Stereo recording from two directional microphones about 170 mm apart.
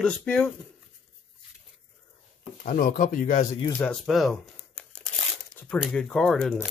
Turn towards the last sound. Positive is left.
turn(degrees=5)  # may be behind; listen again after turning